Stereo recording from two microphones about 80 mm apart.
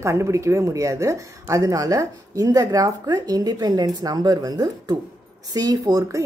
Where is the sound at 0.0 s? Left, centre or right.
Right.